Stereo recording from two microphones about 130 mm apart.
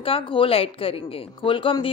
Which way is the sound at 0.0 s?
45° left (ahead or behind).